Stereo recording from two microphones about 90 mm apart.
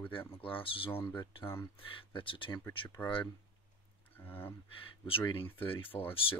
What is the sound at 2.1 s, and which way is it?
Speech, 70° left (ahead or behind).